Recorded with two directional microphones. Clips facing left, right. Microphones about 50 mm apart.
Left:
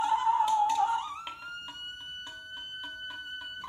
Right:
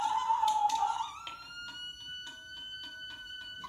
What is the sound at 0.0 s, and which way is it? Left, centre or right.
Music, left.